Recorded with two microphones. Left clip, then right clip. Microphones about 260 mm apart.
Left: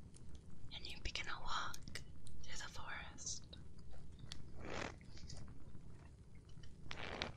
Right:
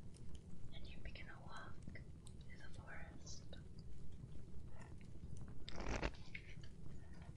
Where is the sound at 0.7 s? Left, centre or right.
Left.